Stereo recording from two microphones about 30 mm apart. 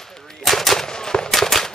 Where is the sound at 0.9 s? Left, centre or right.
Left.